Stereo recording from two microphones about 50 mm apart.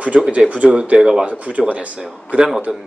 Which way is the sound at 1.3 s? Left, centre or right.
Right.